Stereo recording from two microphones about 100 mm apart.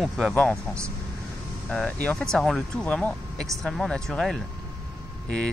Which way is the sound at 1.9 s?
15° left (ahead or behind).